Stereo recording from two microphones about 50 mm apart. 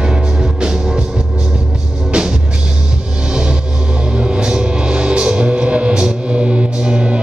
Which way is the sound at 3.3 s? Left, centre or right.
Centre.